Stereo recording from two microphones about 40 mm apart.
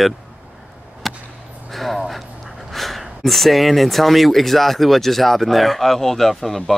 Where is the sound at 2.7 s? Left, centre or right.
Centre.